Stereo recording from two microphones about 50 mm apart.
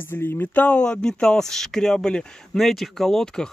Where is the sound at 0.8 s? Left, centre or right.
Centre.